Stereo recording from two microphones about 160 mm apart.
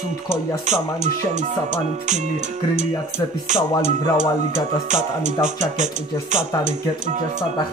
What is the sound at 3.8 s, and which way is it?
Speech, 50° right (ahead or behind).